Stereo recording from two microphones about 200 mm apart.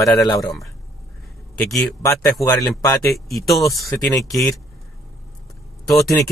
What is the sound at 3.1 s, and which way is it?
Speech, centre (ahead or behind).